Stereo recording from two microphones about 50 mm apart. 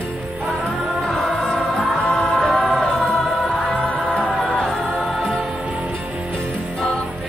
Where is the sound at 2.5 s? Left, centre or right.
Centre.